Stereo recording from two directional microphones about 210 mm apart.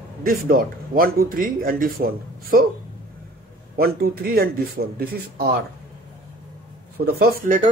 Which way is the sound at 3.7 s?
45° right (ahead or behind).